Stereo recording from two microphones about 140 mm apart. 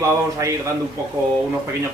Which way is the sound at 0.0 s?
20° right (ahead or behind).